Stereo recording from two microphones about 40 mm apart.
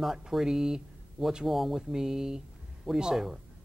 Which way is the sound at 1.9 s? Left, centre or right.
Centre.